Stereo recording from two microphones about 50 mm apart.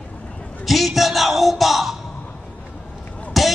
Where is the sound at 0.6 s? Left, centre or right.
Centre.